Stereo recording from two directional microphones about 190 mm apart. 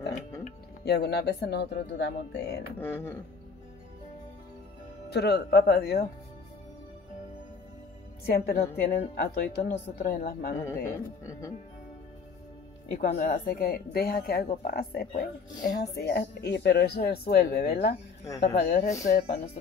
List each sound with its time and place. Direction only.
0.8 s speech: 60° left (ahead or behind)
2.8 s music: 10° left (ahead or behind)
5.1 s speech: 60° left (ahead or behind)
8.3 s speech: 55° left (ahead or behind)
10.6 s music: 15° left (ahead or behind)
12.9 s speech: 50° left (ahead or behind)